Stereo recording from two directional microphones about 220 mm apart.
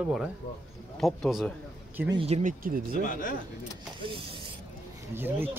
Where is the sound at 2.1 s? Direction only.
30° right (ahead or behind).